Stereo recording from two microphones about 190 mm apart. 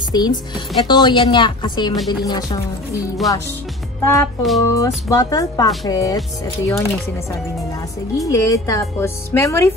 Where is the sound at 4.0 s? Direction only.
10° left (ahead or behind).